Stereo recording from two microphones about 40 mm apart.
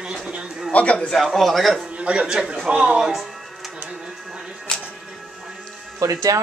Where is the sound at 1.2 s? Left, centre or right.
Centre.